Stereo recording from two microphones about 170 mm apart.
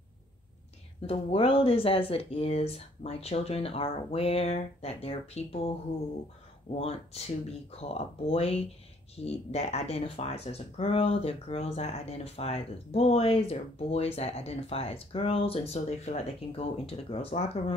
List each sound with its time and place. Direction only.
1.0 s speech: 35° left (ahead or behind)
6.7 s speech: 35° left (ahead or behind)